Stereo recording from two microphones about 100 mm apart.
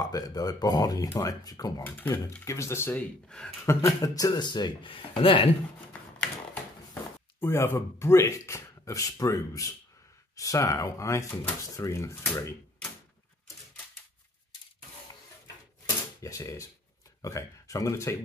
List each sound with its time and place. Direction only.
0.0 s speech: 40° left (ahead or behind)
1.8 s speech: 20° left (ahead or behind); by 4.5 s 35° left (ahead or behind)
4.5 s speech: 50° left (ahead or behind)
6.1 s a sound: 5° left (ahead or behind)
7.3 s speech: 25° left (ahead or behind)
16.2 s speech: 35° left (ahead or behind)